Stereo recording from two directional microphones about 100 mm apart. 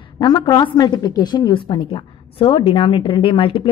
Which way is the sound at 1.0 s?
40° left (ahead or behind).